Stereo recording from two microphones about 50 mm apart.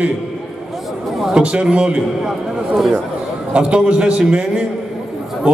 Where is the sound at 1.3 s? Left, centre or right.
Right.